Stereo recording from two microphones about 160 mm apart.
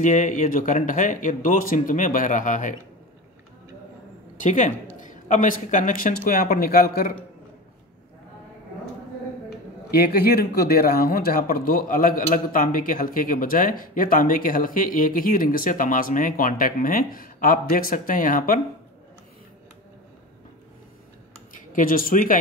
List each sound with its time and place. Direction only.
0.0 s speech: 50° left (ahead or behind)
4.4 s speech: 50° left (ahead or behind); by 7.2 s 70° left (ahead or behind)
9.8 s speech: 80° left; by 18.6 s 60° left (ahead or behind)
21.7 s speech: 60° left (ahead or behind)